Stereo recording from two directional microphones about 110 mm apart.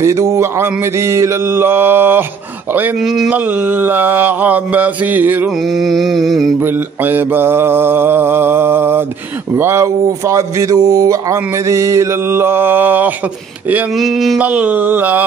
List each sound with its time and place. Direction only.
0.0 s speech: 30° right (ahead or behind)
3.0 s mantra: centre (ahead or behind)
3.3 s mantra: 15° right (ahead or behind)
5.6 s mantra: centre (ahead or behind)
6.6 s speech: 15° right (ahead or behind)
13.9 s mantra: centre (ahead or behind)
14.4 s mantra: 15° right (ahead or behind)